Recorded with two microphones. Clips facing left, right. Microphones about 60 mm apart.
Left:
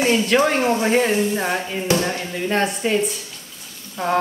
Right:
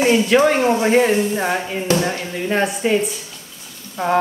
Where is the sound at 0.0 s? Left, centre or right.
Centre.